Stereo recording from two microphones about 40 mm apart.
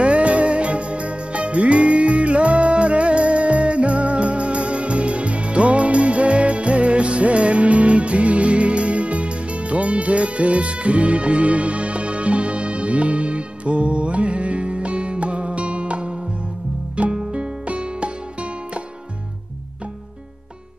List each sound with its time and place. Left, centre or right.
0.0 s music: right